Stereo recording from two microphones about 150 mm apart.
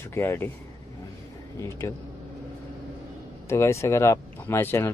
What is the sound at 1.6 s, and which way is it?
Speech, 20° left (ahead or behind).